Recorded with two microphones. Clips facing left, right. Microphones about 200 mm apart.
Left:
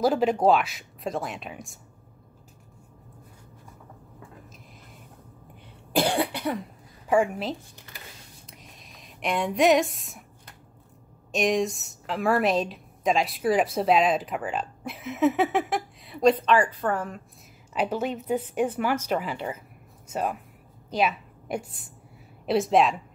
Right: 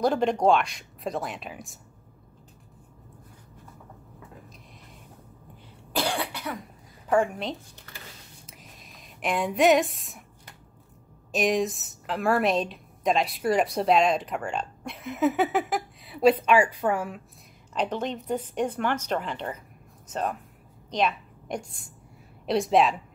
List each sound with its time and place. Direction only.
0.0 s a woman's voice: 5° left (ahead or behind)
6.0 s cough: 30° left (ahead or behind)
7.1 s a woman's voice: 5° left (ahead or behind)
8.5 s a sound: centre (ahead or behind)
11.3 s a woman's voice: centre (ahead or behind)
17.7 s a woman's voice: 5° left (ahead or behind)